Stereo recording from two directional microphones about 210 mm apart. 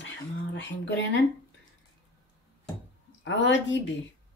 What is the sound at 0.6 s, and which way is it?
Speech, 55° left (ahead or behind).